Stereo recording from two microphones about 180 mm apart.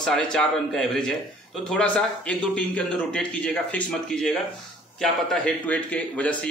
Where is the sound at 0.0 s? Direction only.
5° left (ahead or behind).